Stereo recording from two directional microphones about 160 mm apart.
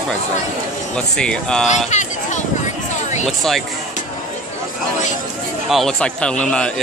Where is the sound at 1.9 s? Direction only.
50° left (ahead or behind).